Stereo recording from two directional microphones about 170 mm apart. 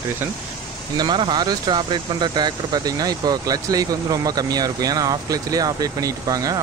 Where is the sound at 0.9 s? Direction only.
25° right (ahead or behind).